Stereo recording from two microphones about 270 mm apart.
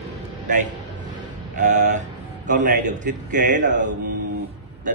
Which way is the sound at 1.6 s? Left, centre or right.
Right.